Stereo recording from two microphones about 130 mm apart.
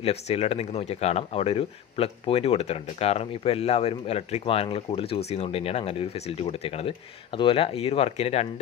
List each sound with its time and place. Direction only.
0.0 s speech: 55° left (ahead or behind)